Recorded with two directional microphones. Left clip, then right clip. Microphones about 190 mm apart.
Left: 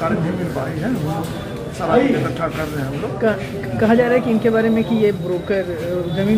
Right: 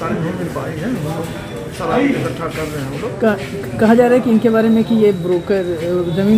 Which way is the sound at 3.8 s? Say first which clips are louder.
Right 4 dB; 55° right (ahead or behind).